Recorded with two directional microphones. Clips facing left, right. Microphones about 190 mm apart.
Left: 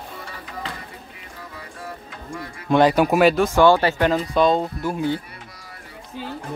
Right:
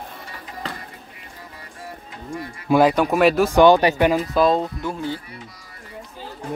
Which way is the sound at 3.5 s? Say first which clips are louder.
Right 2 dB; 15° right (ahead or behind).